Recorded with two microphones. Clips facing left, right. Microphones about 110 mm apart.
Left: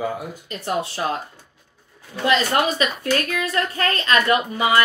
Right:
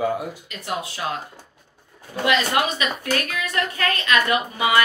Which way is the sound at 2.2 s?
35° left (ahead or behind).